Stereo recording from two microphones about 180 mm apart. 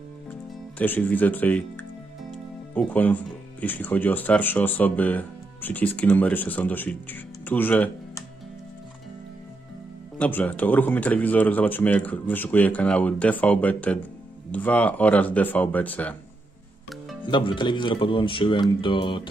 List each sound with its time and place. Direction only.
0.7 s speech: 10° left (ahead or behind)
10.1 s speech: 10° left (ahead or behind)
17.2 s speech: 25° left (ahead or behind)